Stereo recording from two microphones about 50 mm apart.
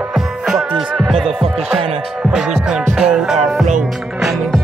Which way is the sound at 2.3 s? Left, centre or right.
Centre.